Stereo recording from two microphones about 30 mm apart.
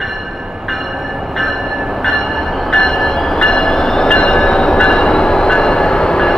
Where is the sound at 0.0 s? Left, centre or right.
Centre.